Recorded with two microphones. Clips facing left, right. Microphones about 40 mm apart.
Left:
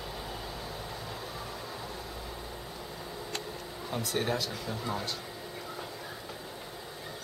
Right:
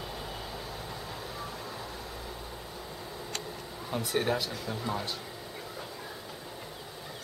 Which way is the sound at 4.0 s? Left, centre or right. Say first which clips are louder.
Right 2 dB; centre.